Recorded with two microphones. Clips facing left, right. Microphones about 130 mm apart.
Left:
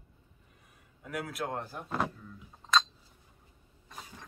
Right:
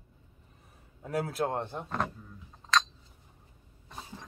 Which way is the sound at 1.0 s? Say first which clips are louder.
Right 6 dB; 30° right (ahead or behind).